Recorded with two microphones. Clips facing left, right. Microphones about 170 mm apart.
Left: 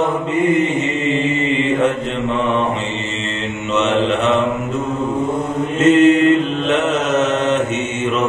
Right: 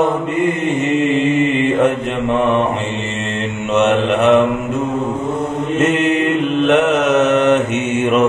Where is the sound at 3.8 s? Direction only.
60° right (ahead or behind).